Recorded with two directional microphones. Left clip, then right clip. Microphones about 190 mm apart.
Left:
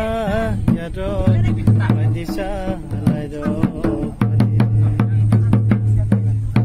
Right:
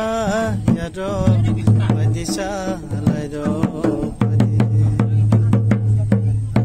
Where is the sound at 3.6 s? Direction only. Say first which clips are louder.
Right 1 dB; 45° right (ahead or behind).